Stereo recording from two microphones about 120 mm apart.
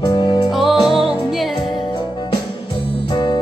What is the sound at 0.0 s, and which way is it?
Music, 35° left (ahead or behind).